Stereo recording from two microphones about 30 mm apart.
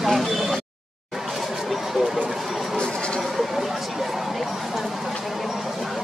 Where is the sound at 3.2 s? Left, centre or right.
Centre.